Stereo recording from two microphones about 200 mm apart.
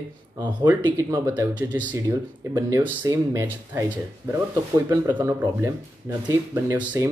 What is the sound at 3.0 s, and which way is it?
Speech, 15° right (ahead or behind).